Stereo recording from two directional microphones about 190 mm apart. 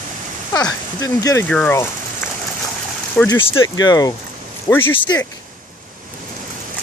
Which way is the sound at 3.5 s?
20° left (ahead or behind).